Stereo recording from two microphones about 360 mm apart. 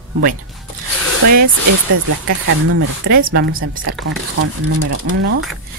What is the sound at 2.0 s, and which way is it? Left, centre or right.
Speech, right.